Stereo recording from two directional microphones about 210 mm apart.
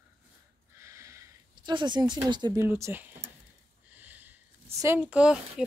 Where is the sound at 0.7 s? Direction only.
15° right (ahead or behind).